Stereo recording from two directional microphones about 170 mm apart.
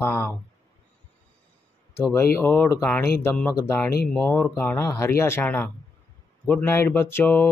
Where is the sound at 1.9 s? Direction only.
15° left (ahead or behind).